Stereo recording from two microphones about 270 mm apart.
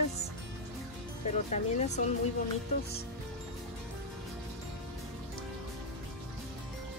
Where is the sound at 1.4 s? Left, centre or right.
Left.